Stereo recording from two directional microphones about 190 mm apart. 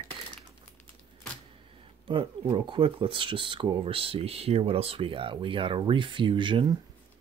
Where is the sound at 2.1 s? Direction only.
25° right (ahead or behind).